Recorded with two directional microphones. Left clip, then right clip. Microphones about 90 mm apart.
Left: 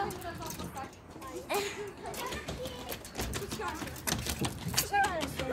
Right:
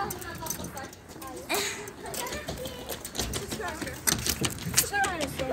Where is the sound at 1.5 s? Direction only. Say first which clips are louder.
Right 4 dB; 35° left (ahead or behind).